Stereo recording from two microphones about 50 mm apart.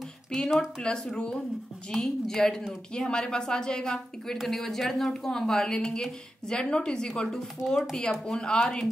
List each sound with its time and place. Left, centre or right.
0.8 s a woman's voice: centre
4.4 s a woman's voice: centre